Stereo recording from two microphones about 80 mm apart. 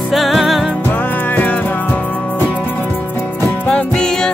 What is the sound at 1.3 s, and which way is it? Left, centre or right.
Music, centre.